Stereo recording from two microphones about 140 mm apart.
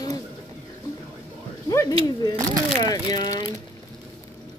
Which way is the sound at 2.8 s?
25° left (ahead or behind).